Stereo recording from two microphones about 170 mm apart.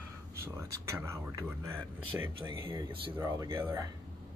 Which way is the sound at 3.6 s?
15° right (ahead or behind).